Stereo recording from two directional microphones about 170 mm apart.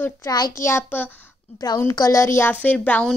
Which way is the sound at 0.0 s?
20° left (ahead or behind).